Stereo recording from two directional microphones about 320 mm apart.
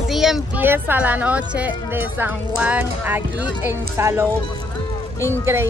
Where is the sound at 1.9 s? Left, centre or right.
Centre.